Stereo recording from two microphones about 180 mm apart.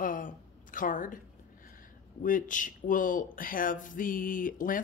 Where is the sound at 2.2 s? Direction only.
50° left (ahead or behind).